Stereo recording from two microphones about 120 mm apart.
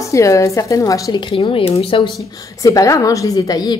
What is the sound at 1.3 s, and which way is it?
Speech, 55° left (ahead or behind).